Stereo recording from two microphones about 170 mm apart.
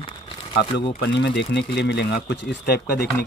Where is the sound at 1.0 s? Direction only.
90° left.